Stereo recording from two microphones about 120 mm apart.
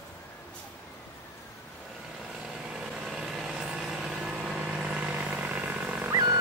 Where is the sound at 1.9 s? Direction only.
Centre (ahead or behind).